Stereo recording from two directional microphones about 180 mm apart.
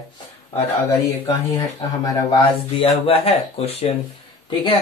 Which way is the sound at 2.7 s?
30° left (ahead or behind).